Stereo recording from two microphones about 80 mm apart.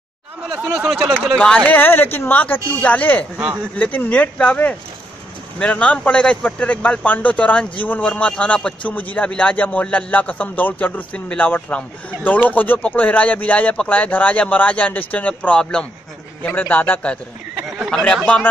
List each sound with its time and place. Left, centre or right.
1.7 s speech: left
3.3 s speech: right
3.7 s speech: left
17.6 s a sound: centre
17.9 s speech: centre
18.2 s speech: centre